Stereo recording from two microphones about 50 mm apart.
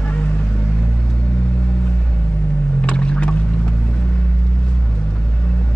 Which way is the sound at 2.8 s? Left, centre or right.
Left.